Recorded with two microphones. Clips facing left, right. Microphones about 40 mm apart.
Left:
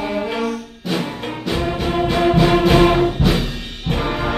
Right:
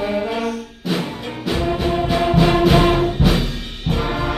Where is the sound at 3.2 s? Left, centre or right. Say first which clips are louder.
Even; centre.